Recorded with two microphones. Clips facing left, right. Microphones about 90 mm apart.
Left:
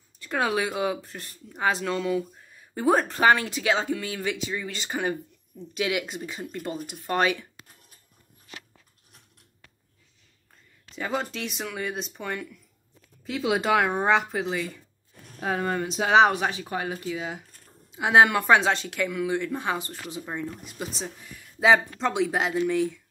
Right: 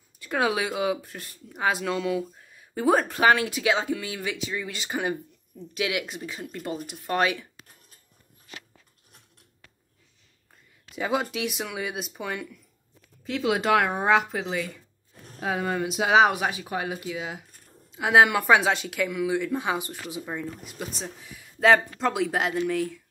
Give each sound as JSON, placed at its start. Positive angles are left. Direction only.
{"t": 0.2, "sound": "speech", "side_deg": -5}
{"t": 11.0, "sound": "speech", "side_deg": -5}